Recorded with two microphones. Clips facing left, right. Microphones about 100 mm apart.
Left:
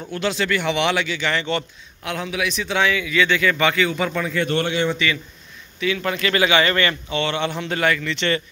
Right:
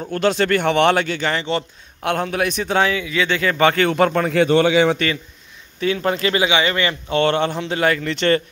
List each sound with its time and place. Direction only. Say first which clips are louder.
0.1 s speech: right 5 dB; 45° right (ahead or behind)
1.3 s a man's voice: even; 30° right (ahead or behind)
2.0 s a man's voice: right 5 dB; 50° right (ahead or behind)
3.8 s a man's voice: right 5 dB; 55° right (ahead or behind)
4.3 s a man's voice: right 7 dB; 85° right
4.9 s a man's voice: right 1 dB; 40° right (ahead or behind)
6.3 s a man's voice: even; 20° right (ahead or behind)
7.1 s speech: right 5 dB; 45° right (ahead or behind)
7.5 s a man's voice: right 2 dB; 30° right (ahead or behind)